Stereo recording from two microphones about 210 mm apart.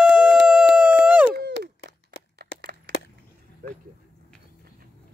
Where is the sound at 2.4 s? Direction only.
50° right (ahead or behind).